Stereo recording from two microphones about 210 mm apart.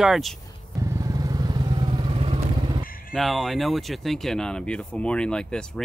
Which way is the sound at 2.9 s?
45° left (ahead or behind).